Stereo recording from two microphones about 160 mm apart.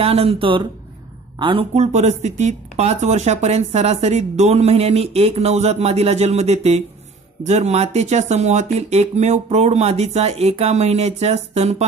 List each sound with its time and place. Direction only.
0.0 s speech: 40° right (ahead or behind)